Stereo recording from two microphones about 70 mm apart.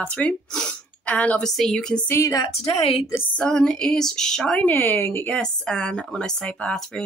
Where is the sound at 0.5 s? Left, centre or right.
Centre.